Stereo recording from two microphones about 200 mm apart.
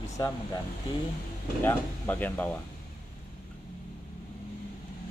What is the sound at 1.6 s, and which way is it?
Speech, 10° left (ahead or behind).